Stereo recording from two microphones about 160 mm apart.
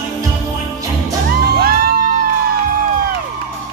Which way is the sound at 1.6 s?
65° right (ahead or behind).